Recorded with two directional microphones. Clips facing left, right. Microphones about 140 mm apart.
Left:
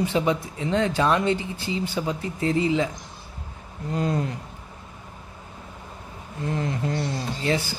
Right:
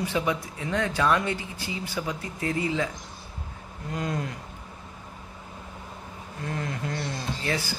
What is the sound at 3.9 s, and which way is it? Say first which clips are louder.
Speech: left 5 dB; 30° left (ahead or behind).